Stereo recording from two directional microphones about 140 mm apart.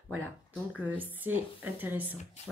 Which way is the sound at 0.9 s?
15° right (ahead or behind).